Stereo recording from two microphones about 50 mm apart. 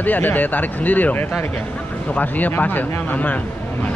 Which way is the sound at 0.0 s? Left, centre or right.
Left.